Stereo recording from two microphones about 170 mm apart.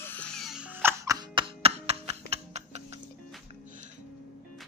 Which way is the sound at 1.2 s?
30° right (ahead or behind).